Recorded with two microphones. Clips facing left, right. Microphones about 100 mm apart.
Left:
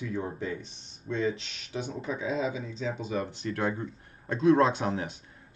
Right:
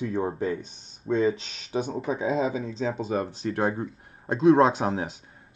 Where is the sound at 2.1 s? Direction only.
35° right (ahead or behind).